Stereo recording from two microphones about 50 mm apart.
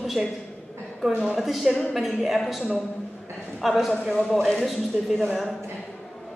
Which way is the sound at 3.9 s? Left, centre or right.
Centre.